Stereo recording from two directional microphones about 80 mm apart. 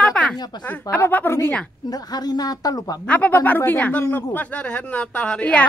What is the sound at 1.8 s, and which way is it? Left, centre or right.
A woman's voice, left.